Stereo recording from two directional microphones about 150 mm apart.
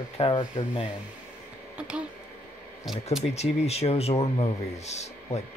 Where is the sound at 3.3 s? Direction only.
45° left (ahead or behind).